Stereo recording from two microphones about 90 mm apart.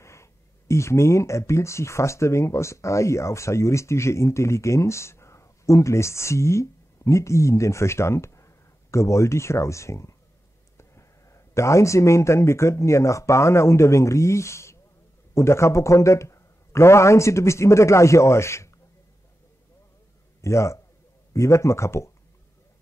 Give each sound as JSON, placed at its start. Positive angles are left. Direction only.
{"t": 0.0, "sound": "a man's voice", "side_deg": 30}
{"t": 20.4, "sound": "a man's voice", "side_deg": 30}